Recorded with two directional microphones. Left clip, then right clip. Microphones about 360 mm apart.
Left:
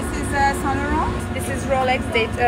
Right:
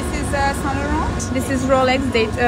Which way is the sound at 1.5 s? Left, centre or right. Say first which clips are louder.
Right 4 dB; right.